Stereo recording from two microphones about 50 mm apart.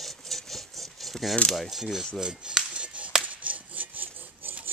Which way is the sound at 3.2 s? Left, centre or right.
Right.